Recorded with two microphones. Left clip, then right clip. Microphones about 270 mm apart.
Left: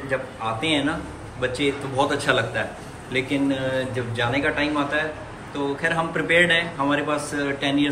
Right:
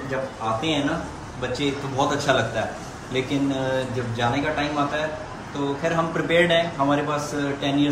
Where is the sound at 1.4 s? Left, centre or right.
Centre.